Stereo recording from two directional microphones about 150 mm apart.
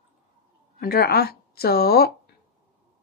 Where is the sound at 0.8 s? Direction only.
90° left.